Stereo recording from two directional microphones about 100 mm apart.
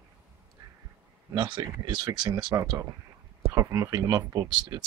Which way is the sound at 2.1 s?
35° right (ahead or behind).